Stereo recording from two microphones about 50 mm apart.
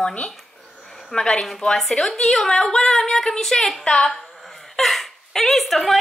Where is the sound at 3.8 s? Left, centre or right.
Centre.